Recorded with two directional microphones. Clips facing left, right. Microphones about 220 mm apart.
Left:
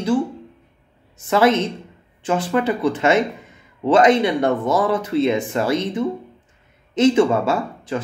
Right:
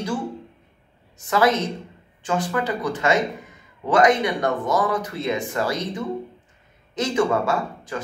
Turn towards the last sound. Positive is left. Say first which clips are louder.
# left 3 dB
turn(degrees=25)  # may be behind; listen again after turning